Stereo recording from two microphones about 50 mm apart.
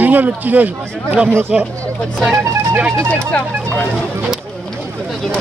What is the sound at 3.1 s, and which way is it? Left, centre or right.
Speech, left.